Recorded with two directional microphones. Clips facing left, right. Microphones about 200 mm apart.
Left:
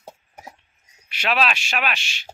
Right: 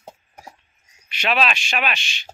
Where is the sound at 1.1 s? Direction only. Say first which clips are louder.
Right 1 dB; 5° left (ahead or behind).